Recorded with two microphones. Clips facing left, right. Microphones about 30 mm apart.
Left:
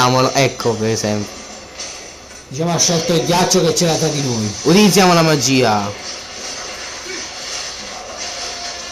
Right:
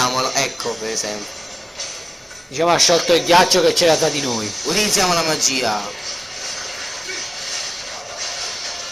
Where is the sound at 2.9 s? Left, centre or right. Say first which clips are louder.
Right 2 dB; centre.